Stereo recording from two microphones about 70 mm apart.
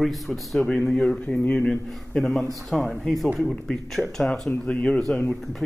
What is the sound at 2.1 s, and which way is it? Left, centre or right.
A man's voice, centre.